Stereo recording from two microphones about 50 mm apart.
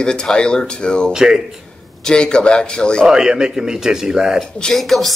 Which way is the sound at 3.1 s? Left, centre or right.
Centre.